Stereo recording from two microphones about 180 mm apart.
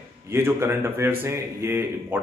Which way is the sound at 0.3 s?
15° right (ahead or behind).